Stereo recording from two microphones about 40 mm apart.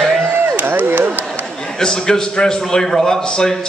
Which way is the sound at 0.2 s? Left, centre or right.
Right.